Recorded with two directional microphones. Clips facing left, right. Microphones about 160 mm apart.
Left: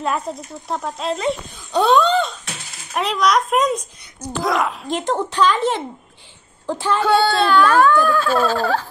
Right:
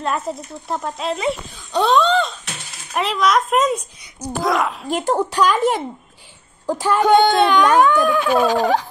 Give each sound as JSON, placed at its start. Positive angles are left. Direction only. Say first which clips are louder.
{"t": 0.0, "sound": "a child's voice", "louder": "even", "side_deg": 0}
{"t": 4.9, "sound": "a child's voice", "louder": "right 2 dB", "side_deg": -10}